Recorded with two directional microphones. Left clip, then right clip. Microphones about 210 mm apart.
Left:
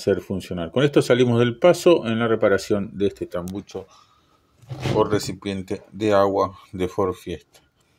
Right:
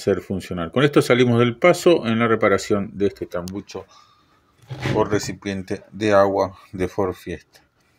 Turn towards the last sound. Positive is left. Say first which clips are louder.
# even
turn(degrees=-5)  # may be behind; listen again after turning